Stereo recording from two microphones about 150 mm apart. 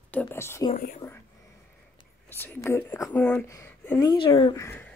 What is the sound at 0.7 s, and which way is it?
Speech, 70° left (ahead or behind).